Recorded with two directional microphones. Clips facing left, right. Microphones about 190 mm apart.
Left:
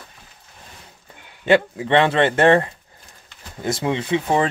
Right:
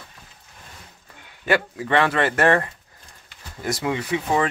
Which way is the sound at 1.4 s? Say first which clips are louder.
Left 5 dB; 25° left (ahead or behind).